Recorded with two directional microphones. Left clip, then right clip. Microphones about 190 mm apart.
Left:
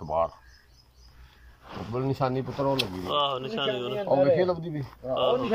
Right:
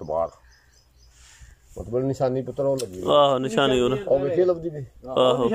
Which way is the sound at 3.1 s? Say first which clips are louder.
Right 11 dB; 70° right (ahead or behind).